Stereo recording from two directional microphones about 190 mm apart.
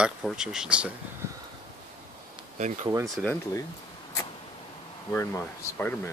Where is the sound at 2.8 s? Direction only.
15° right (ahead or behind).